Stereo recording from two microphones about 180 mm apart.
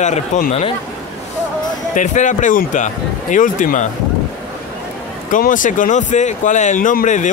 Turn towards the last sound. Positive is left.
turn(degrees=45)  # may be behind; listen again after turning